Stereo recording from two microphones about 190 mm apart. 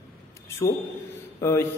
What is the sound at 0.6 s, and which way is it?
A man's voice, 15° left (ahead or behind).